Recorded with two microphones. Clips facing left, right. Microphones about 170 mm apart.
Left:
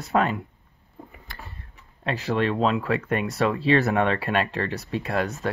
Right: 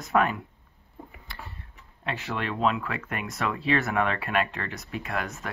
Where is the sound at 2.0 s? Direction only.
35° left (ahead or behind).